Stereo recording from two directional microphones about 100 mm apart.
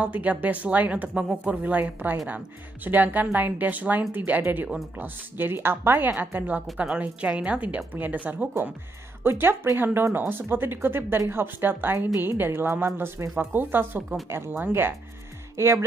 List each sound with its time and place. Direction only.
0.0 s a woman's voice: 15° right (ahead or behind)
15.5 s speech: 30° right (ahead or behind)